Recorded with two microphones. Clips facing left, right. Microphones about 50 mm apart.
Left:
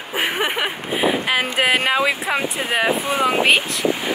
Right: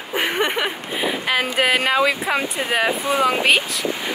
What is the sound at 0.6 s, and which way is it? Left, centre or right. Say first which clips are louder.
Speech: left 2 dB; left.